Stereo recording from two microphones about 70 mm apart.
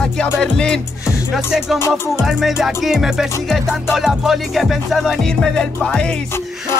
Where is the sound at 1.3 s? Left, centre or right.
Centre.